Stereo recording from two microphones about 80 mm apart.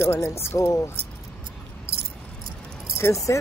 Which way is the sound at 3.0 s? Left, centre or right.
Left.